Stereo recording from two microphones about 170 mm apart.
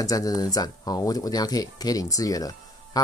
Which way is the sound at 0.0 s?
20° left (ahead or behind).